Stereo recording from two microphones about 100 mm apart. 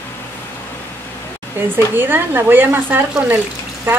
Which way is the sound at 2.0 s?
20° right (ahead or behind).